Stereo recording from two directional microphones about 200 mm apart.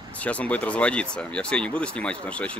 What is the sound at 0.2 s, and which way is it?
Speech, 5° left (ahead or behind).